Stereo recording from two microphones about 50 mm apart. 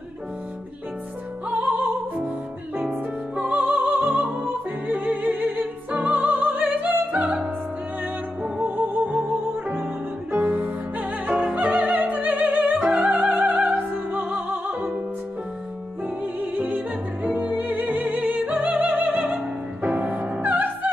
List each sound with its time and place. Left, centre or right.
3.3 s music: centre
3.7 s music: right
4.3 s opera: right
8.6 s music: right
10.3 s music: right
12.8 s music: right
16.3 s music: right